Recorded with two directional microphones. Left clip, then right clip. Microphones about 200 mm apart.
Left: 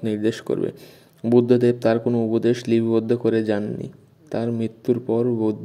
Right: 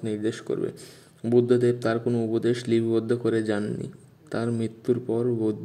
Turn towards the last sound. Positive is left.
turn(degrees=10)  # may be behind; listen again after turning